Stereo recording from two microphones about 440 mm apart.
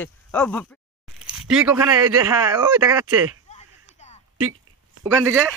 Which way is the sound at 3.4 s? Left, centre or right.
Centre.